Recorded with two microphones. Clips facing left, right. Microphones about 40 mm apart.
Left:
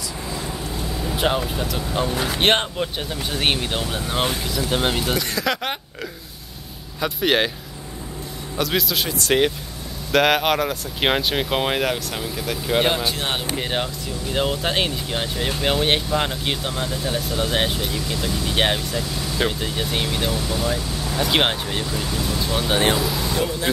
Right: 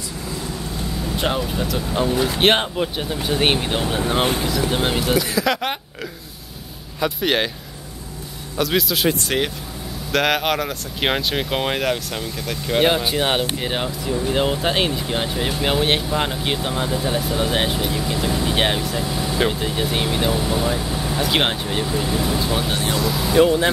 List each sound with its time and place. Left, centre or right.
1.0 s speech: centre
4.5 s speech: centre
7.0 s speech: centre
8.5 s speech: centre
13.6 s speech: centre
19.4 s speech: centre
21.2 s speech: centre
21.8 s speech: centre
22.4 s speech: centre
23.3 s speech: right